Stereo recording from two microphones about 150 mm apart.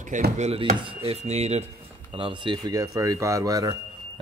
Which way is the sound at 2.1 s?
35° right (ahead or behind).